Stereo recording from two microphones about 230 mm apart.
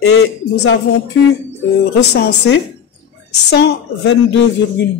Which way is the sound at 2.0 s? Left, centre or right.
Left.